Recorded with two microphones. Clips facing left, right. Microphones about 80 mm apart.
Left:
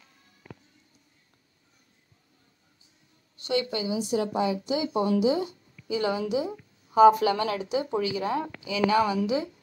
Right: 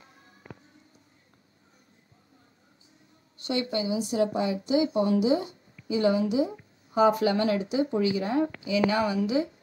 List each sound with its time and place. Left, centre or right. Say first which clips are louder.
0.0 s music: right 4 dB; right
3.4 s a woman's voice: even; right